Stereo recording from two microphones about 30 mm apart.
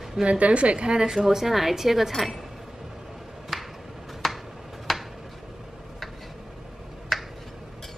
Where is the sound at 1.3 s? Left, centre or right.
Centre.